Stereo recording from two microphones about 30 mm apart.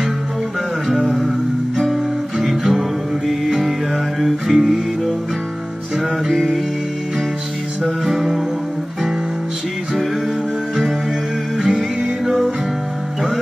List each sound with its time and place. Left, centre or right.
0.9 s music: centre
2.4 s music: centre
4.2 s music: centre
6.2 s music: centre
11.5 s music: centre